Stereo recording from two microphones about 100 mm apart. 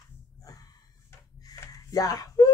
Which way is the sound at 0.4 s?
35° left (ahead or behind).